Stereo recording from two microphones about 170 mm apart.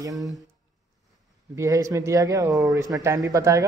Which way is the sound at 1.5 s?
20° right (ahead or behind).